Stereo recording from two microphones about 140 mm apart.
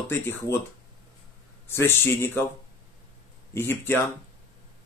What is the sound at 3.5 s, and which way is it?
Speech, 15° left (ahead or behind).